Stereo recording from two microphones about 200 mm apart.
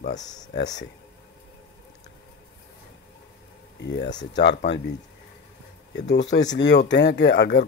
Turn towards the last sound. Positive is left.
turn(degrees=55)  # may be behind; listen again after turning